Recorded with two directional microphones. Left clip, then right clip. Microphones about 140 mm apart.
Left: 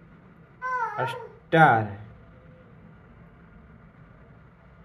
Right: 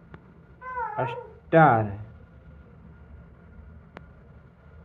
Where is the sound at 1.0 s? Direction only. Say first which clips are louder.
Even; 25° right (ahead or behind).